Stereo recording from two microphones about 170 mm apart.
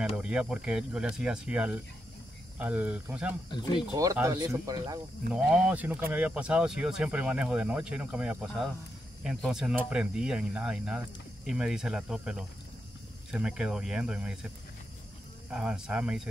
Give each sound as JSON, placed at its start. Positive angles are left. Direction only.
{"t": 0.2, "sound": "speech", "side_deg": -5}
{"t": 3.5, "sound": "speech", "side_deg": 25}
{"t": 3.9, "sound": "speech", "side_deg": -20}
{"t": 5.3, "sound": "speech", "side_deg": -5}
{"t": 15.5, "sound": "speech", "side_deg": -5}